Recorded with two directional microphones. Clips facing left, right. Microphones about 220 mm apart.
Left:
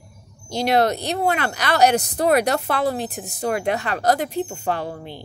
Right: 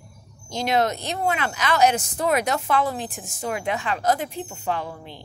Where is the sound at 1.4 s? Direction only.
65° left (ahead or behind).